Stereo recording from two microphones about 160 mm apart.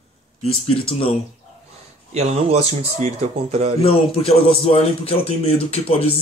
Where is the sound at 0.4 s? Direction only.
35° left (ahead or behind).